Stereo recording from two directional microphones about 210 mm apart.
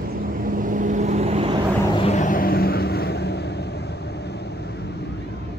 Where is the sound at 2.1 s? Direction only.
40° left (ahead or behind).